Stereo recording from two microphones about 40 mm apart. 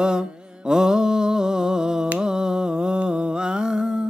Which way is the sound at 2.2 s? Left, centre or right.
Centre.